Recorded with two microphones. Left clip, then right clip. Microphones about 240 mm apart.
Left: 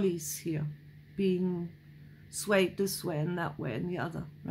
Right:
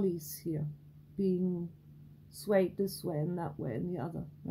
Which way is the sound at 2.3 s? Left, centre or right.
Centre.